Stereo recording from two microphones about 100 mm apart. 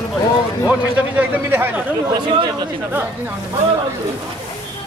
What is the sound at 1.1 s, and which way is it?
Speech, 15° right (ahead or behind).